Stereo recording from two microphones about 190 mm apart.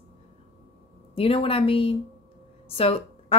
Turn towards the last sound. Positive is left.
turn(degrees=30)  # may be behind; listen again after turning